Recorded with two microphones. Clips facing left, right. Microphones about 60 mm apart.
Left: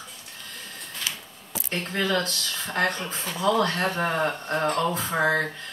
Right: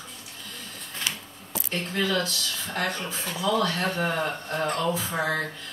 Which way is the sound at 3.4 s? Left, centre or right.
Left.